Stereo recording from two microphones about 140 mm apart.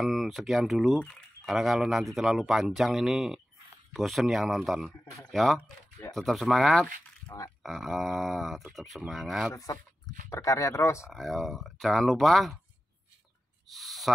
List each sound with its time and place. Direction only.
0.0 s speech: centre (ahead or behind)
7.2 s speech: 25° left (ahead or behind)
7.6 s speech: centre (ahead or behind)
10.3 s speech: 25° left (ahead or behind)
11.1 s speech: centre (ahead or behind)
13.7 s speech: centre (ahead or behind)